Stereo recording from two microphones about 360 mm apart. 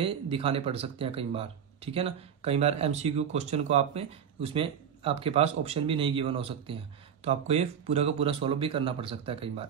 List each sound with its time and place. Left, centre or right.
0.0 s speech: centre